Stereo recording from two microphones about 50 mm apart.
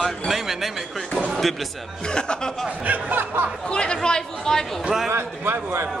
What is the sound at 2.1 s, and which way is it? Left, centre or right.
Speech, centre.